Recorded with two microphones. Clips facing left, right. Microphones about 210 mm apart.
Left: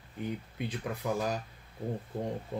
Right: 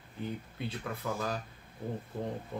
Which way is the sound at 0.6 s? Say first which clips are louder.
Left 2 dB; 15° left (ahead or behind).